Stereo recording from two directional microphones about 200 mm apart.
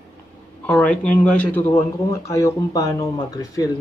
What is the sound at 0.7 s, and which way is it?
Speech, 5° left (ahead or behind).